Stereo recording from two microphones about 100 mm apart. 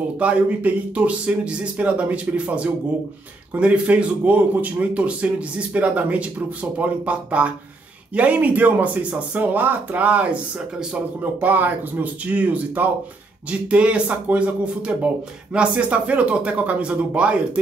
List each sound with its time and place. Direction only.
0.2 s speech: 15° right (ahead or behind)